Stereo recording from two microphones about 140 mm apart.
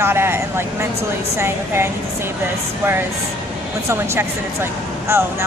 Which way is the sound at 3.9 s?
20° right (ahead or behind).